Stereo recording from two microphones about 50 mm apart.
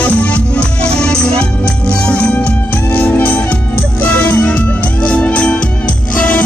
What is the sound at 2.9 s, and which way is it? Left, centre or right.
Music, left.